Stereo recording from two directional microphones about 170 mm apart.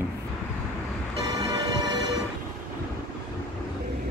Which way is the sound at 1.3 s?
20° right (ahead or behind).